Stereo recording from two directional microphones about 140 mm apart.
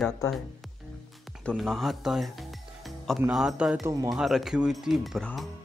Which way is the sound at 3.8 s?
20° right (ahead or behind).